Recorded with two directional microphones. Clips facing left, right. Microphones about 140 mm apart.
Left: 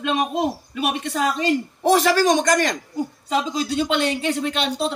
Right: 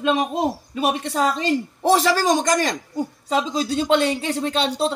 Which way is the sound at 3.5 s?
35° right (ahead or behind).